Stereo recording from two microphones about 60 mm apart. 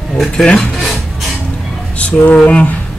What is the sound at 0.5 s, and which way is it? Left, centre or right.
Music, centre.